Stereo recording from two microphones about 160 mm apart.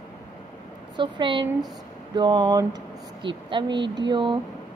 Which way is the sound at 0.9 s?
30° right (ahead or behind).